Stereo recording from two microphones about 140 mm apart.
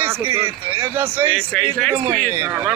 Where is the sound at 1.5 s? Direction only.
5° left (ahead or behind).